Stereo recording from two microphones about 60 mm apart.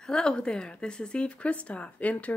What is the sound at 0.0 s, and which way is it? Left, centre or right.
A woman's voice, centre.